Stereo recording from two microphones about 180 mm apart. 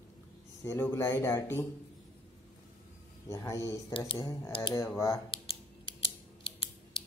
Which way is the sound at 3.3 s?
15° left (ahead or behind).